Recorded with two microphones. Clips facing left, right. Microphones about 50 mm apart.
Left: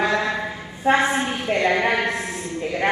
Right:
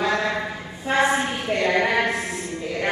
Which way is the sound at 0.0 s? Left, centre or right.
Left.